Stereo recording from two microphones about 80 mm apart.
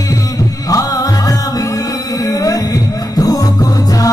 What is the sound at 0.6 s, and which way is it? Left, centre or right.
Music, left.